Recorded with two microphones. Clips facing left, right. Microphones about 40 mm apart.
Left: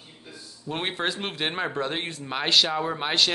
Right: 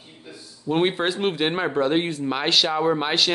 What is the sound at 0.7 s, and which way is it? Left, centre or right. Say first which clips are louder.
Speech: right 7 dB; centre.